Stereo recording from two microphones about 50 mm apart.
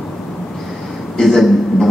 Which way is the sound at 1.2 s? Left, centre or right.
Centre.